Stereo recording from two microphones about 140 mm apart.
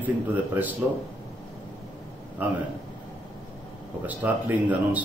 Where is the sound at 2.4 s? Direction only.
15° right (ahead or behind).